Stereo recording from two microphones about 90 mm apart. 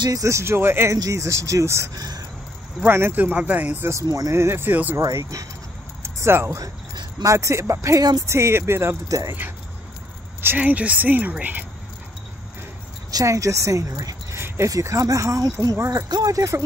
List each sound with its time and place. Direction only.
0.0 s speech: 40° right (ahead or behind)
2.0 s a sound: 45° right (ahead or behind)
2.8 s a woman's voice: 25° right (ahead or behind)
3.9 s speech: 45° right (ahead or behind)
4.3 s a woman's voice: 30° right (ahead or behind)
4.9 s speech: 35° right (ahead or behind)
8.0 s speech: 45° right (ahead or behind)
8.3 s a woman's voice: 30° right (ahead or behind)
10.4 s a woman's voice: 20° right (ahead or behind)
13.1 s speech: 35° right (ahead or behind)